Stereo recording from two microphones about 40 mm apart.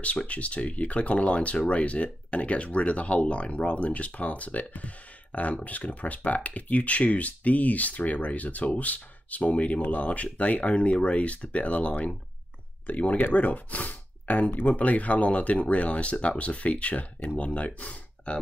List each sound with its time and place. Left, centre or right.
0.0 s speech: left